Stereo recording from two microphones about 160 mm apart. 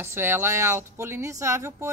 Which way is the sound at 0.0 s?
15° right (ahead or behind).